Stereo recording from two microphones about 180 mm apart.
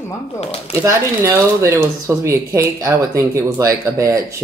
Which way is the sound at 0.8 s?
15° right (ahead or behind).